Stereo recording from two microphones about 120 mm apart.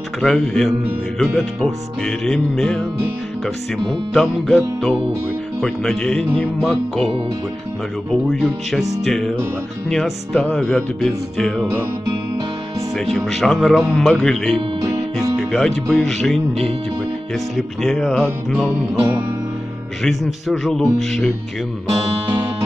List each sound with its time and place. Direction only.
0.2 s speech: 5° left (ahead or behind)
5.6 s speech: 5° left (ahead or behind)
8.1 s speech: 5° left (ahead or behind)
12.9 s speech: 5° left (ahead or behind)
18.9 s music: 20° right (ahead or behind)
20.0 s speech: centre (ahead or behind)